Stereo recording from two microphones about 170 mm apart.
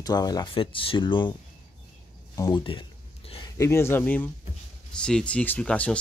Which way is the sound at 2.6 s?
30° left (ahead or behind).